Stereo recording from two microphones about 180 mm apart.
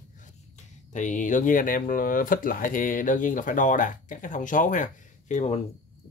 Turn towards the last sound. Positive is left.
turn(degrees=40)  # may be behind; listen again after turning